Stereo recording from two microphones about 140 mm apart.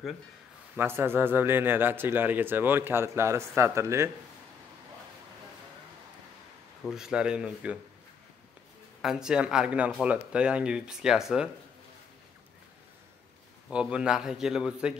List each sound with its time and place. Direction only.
0.7 s speech: 15° right (ahead or behind)
6.9 s speech: 5° right (ahead or behind)
9.0 s a man's voice: 5° right (ahead or behind)
13.7 s a man's voice: 5° right (ahead or behind)